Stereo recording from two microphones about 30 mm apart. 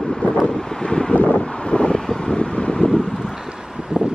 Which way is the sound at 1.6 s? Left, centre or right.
Left.